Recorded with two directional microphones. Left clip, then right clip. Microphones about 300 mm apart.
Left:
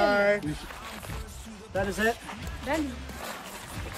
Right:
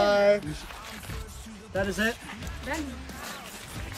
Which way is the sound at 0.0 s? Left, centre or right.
Centre.